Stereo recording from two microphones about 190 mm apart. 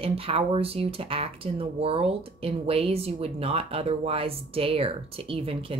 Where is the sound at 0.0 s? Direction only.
30° right (ahead or behind).